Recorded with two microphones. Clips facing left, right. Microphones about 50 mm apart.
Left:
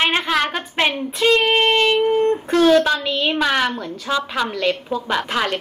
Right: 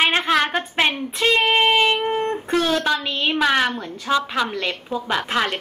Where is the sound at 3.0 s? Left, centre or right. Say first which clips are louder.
Left 3 dB; centre.